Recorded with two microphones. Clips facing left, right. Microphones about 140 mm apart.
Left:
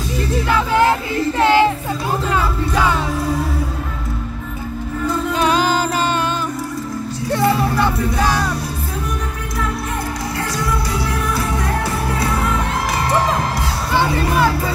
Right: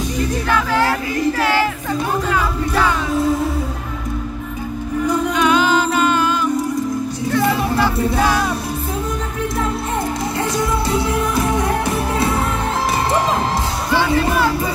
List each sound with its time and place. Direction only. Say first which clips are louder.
0.6 s choir: left 4 dB; 25° left (ahead or behind)
5.3 s music: even; 35° left (ahead or behind)
10.9 s music: right 3 dB; 20° right (ahead or behind)